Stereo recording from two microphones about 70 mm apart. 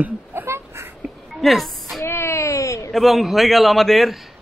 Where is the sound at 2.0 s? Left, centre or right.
Left.